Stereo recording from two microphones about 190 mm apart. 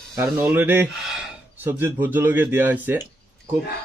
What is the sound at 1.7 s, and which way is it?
A man's voice, 10° right (ahead or behind).